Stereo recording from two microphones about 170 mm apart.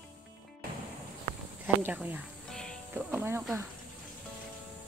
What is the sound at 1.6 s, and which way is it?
Speech, 10° right (ahead or behind).